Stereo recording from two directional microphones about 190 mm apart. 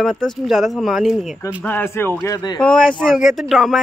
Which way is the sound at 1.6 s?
10° left (ahead or behind).